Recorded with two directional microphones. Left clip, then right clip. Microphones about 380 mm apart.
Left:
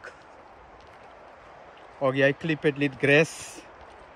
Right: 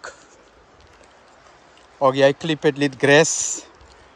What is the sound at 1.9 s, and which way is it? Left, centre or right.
A man's voice, centre.